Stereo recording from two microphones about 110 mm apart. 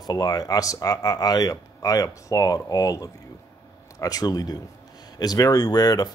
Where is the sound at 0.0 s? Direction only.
35° left (ahead or behind).